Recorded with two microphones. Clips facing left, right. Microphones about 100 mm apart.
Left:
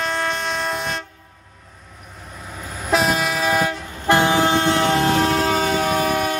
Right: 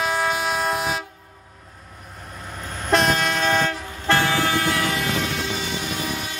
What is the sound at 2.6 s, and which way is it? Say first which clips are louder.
Train: even; 5° left (ahead or behind).